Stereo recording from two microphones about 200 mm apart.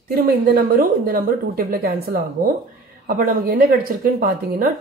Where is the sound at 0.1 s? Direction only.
50° right (ahead or behind).